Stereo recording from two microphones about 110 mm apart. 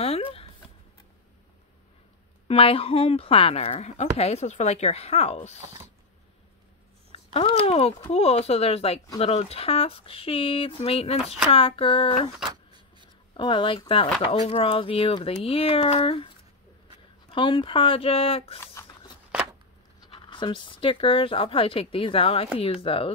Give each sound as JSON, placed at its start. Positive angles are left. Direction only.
{"t": 0.0, "sound": "a sound", "side_deg": 65}
{"t": 2.4, "sound": "speech", "side_deg": 60}
{"t": 7.1, "sound": "speech", "side_deg": 65}
{"t": 13.3, "sound": "speech", "side_deg": 50}
{"t": 17.3, "sound": "speech", "side_deg": 55}
{"t": 20.1, "sound": "speech", "side_deg": 50}